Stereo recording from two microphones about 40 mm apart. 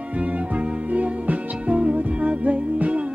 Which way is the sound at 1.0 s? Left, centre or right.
Right.